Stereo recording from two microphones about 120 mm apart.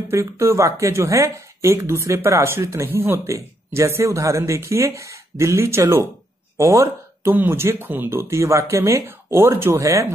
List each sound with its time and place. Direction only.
0.1 s speech: 25° right (ahead or behind)
6.5 s a sound: 25° right (ahead or behind)
7.3 s speech: 20° right (ahead or behind)